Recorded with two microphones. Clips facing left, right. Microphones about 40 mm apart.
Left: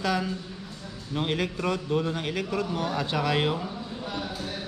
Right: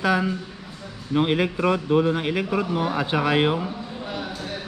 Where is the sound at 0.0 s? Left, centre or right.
Right.